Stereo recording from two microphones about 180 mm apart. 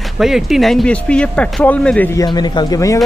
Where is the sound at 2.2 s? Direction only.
25° left (ahead or behind).